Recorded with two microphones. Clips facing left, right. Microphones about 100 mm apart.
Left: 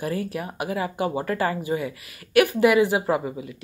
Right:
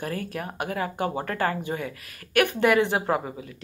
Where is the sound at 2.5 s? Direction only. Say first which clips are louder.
Left 3 dB; 5° left (ahead or behind).